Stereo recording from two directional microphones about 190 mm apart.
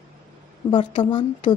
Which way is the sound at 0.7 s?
25° left (ahead or behind).